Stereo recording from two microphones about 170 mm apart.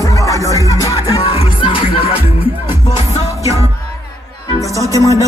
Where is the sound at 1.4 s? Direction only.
30° left (ahead or behind).